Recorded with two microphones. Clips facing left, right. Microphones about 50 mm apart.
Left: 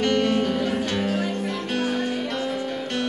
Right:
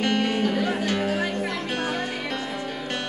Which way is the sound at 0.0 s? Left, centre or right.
Centre.